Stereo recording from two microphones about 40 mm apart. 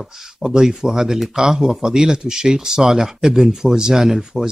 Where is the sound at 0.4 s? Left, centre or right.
Centre.